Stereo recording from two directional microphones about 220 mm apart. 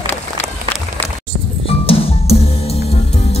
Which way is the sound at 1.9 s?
25° left (ahead or behind).